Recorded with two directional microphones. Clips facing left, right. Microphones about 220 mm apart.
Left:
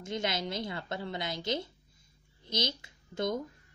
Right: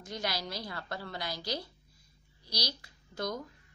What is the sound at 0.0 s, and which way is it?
Speech, 25° left (ahead or behind).